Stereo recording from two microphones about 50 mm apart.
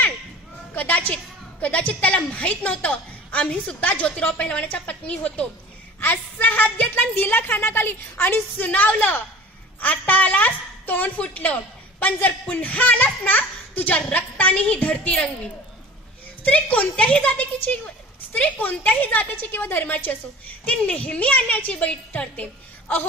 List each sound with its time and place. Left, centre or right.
0.7 s a woman's voice: left
5.9 s a woman's voice: left
16.4 s a woman's voice: left
19.0 s a woman's voice: left